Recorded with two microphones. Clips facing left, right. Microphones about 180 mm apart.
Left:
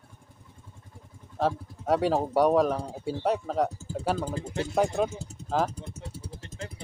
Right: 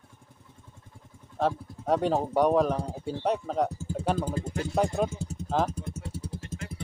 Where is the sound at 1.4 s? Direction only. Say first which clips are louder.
Even; 5° left (ahead or behind).